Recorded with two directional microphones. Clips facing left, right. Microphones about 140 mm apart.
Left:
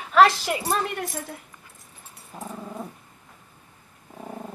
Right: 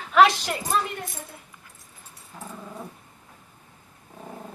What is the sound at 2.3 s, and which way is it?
Dog, 20° left (ahead or behind).